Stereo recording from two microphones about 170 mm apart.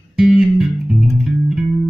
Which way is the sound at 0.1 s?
5° right (ahead or behind).